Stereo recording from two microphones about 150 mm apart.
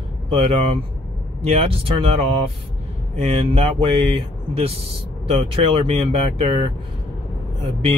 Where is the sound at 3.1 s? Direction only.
40° right (ahead or behind).